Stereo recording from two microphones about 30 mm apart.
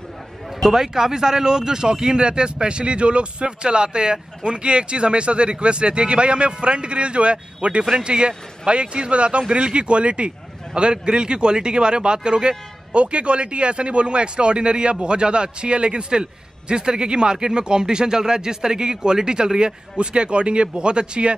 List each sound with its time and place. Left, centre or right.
0.7 s a man's voice: centre; by 21.4 s right